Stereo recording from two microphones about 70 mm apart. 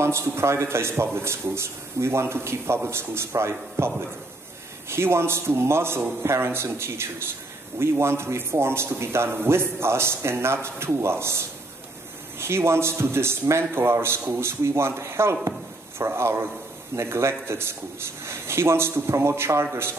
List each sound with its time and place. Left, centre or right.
0.0 s a man's voice: right